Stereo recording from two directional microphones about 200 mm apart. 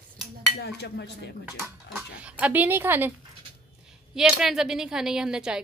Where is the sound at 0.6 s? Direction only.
55° left (ahead or behind).